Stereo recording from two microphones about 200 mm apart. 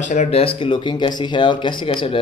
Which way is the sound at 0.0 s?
35° left (ahead or behind).